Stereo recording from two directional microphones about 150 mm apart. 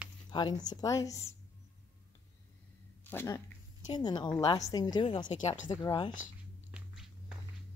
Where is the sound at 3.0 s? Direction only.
15° left (ahead or behind).